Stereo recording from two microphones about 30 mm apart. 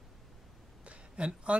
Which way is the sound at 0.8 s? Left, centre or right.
Right.